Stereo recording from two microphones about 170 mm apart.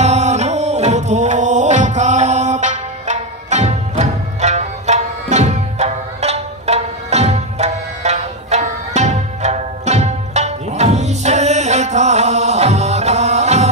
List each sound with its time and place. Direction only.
0.0 s music: 40° right (ahead or behind)